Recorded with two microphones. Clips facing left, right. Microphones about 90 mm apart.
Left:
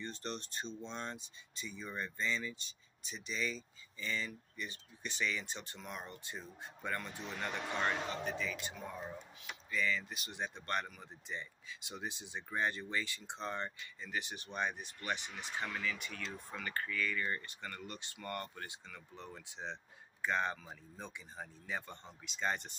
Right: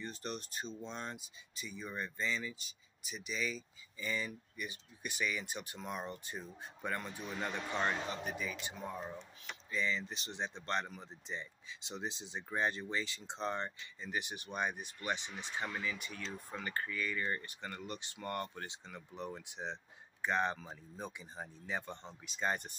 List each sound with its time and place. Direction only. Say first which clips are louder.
0.0 s speech: even; 5° right (ahead or behind)